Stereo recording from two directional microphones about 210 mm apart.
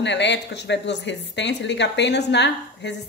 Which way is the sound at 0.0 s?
55° left (ahead or behind).